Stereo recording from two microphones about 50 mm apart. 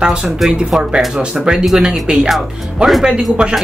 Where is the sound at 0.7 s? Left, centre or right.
Centre.